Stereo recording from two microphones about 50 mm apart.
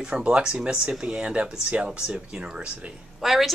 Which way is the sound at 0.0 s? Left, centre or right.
Right.